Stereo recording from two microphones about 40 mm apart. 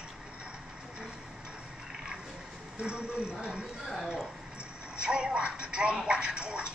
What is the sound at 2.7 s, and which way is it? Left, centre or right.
Speech, right.